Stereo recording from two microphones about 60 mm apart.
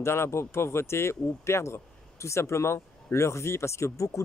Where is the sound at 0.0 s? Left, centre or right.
Left.